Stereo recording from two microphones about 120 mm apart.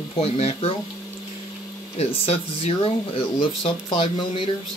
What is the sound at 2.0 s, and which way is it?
Speech, 55° left (ahead or behind).